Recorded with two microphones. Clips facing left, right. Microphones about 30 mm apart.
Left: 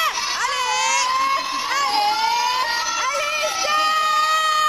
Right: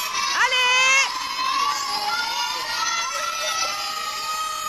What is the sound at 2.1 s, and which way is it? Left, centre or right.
Emergency vehicle, left.